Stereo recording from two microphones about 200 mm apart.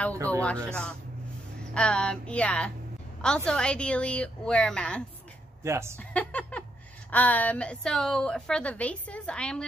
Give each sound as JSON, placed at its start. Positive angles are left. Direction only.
{"t": 0.1, "sound": "speech", "side_deg": -15}
{"t": 1.7, "sound": "a woman's voice", "side_deg": 5}
{"t": 5.6, "sound": "speech", "side_deg": -15}
{"t": 5.9, "sound": "a woman's voice", "side_deg": 5}